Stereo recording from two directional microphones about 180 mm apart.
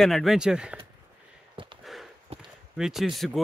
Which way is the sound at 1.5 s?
30° right (ahead or behind).